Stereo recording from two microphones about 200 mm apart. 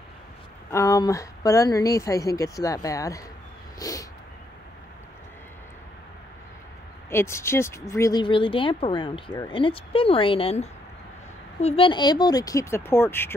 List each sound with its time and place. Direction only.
0.7 s a woman's voice: 15° left (ahead or behind)
3.8 s cat: 15° left (ahead or behind)
7.1 s a woman's voice: 15° left (ahead or behind)